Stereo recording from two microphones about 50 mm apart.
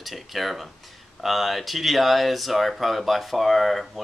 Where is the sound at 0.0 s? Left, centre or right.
Centre.